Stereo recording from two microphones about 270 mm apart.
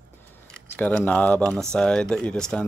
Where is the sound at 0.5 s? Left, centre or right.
Centre.